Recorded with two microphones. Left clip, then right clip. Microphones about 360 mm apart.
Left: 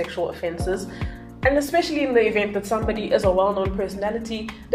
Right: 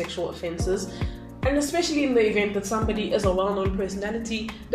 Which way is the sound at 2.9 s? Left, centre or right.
Left.